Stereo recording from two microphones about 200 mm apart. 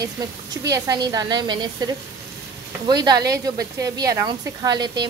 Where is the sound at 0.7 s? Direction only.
15° right (ahead or behind).